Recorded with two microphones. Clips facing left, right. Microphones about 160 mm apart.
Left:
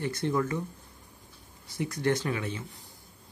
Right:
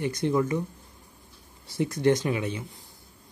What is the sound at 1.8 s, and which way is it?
Speech, 20° right (ahead or behind).